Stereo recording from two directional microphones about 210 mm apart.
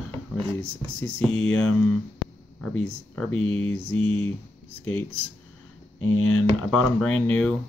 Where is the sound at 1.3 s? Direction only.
75° left (ahead or behind).